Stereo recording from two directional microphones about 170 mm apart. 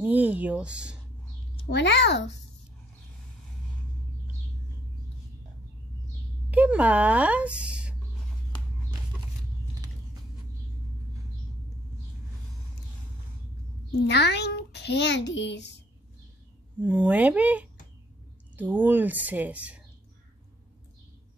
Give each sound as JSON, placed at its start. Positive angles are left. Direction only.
{"t": 0.0, "sound": "speech", "side_deg": -10}
{"t": 1.7, "sound": "a child's voice", "side_deg": 90}
{"t": 6.5, "sound": "a woman's voice", "side_deg": -10}
{"t": 14.0, "sound": "a child's voice", "side_deg": 80}
{"t": 16.8, "sound": "speech", "side_deg": -10}